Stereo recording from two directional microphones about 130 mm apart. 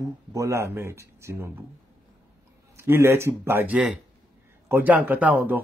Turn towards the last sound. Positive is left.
turn(degrees=-15)  # may be behind; listen again after turning